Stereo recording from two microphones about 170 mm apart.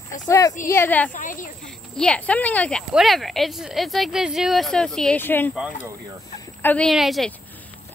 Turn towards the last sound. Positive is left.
turn(degrees=0)  # may be behind; listen again after turning